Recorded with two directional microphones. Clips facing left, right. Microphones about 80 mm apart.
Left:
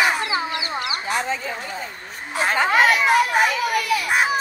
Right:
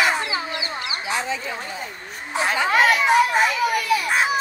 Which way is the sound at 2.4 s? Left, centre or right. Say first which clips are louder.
Left 1 dB; left.